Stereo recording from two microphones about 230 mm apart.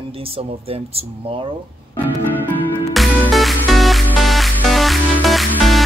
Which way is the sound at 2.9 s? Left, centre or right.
Centre.